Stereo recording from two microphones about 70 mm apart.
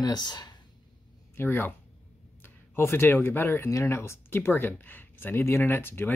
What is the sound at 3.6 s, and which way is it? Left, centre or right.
Speech, left.